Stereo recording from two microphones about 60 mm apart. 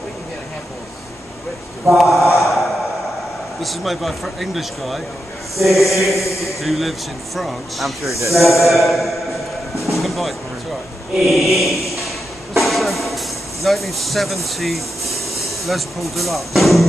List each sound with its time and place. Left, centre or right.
1.9 s speech: centre
3.6 s a man's voice: centre
8.1 s speech: right
8.4 s a man's voice: centre
11.1 s chant: centre
12.5 s speech: centre